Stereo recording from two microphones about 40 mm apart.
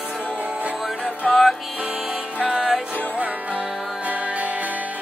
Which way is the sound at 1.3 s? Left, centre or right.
Centre.